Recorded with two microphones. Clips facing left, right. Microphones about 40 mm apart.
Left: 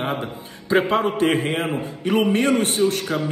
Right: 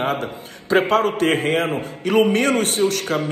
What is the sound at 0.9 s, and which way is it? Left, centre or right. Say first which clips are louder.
Speech: right 2 dB; centre.